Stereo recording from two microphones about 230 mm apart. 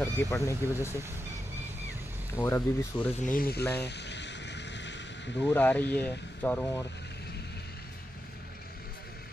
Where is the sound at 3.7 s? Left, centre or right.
Left.